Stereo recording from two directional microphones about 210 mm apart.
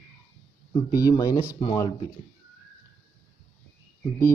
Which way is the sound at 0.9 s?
15° left (ahead or behind).